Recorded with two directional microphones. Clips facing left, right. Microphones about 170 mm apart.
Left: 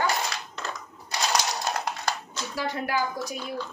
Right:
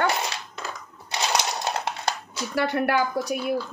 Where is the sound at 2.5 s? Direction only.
65° right (ahead or behind).